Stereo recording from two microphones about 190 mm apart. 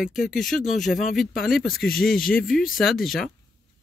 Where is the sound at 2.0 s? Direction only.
50° left (ahead or behind).